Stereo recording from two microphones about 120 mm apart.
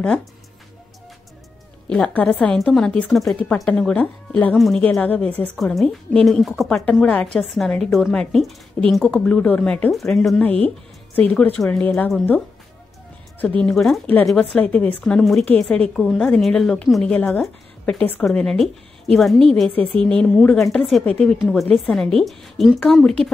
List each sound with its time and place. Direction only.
1.9 s a woman's voice: 10° left (ahead or behind)
5.6 s a woman's voice: 5° left (ahead or behind)
10.4 s speech: 10° left (ahead or behind)
13.4 s a woman's voice: 10° left (ahead or behind)